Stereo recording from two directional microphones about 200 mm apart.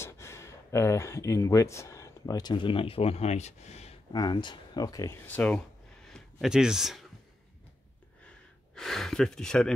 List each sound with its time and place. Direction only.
0.0 s speech: 15° left (ahead or behind); by 4.2 s 35° left (ahead or behind)
4.2 s speech: 20° left (ahead or behind)
6.0 s a sound: centre (ahead or behind)
8.7 s speech: centre (ahead or behind)